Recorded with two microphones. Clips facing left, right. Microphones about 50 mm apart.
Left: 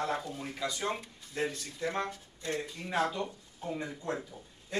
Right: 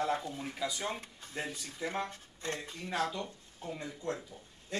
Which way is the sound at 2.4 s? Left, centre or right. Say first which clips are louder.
Left 3 dB; right.